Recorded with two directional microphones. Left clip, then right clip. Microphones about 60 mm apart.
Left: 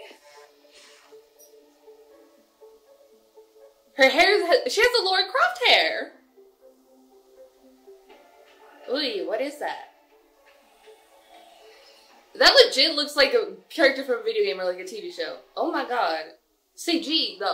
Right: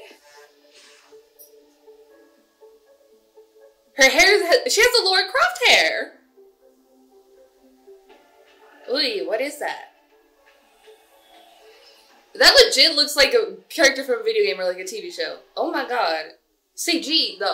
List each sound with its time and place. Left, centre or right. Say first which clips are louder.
0.0 s music: right 1 dB; left
3.9 s a woman's voice: right 3 dB; centre
8.4 s music: even; left
8.8 s speech: right 4 dB; centre
11.2 s music: right 1 dB; left
12.3 s a woman's voice: right 3 dB; centre